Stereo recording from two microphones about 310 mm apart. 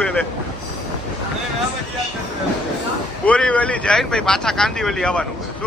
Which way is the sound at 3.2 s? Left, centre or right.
Centre.